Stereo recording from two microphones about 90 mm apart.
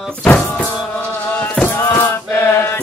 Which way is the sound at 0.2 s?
10° left (ahead or behind).